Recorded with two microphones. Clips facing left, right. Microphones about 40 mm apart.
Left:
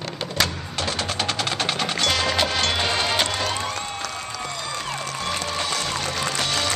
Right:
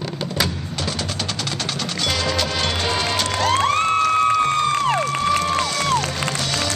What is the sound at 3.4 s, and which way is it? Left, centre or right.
Music, right.